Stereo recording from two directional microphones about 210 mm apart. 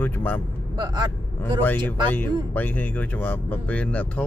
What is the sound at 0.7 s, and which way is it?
Speech, 20° right (ahead or behind).